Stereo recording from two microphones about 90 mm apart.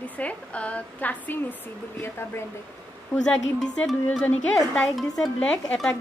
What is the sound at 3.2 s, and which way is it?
Speech, 10° left (ahead or behind).